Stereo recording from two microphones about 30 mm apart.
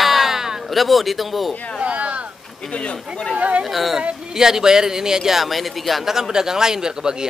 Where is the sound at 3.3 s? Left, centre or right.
Right.